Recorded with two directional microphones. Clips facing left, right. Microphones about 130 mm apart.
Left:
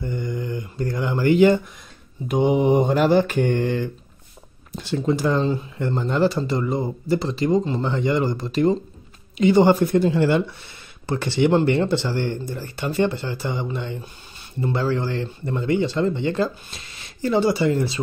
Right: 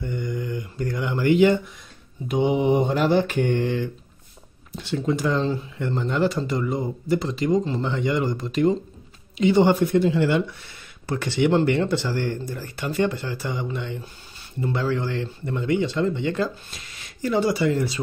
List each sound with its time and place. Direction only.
0.0 s mantra: 30° left (ahead or behind); by 3.9 s 45° left (ahead or behind)
4.7 s speech: 40° left (ahead or behind)